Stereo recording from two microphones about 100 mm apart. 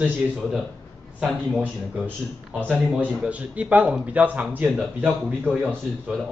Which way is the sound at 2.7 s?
10° right (ahead or behind).